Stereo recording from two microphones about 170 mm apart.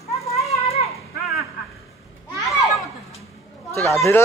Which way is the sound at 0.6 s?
35° left (ahead or behind).